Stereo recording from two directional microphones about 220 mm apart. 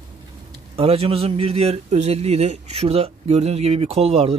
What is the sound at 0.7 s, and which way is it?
A man's voice, 25° right (ahead or behind).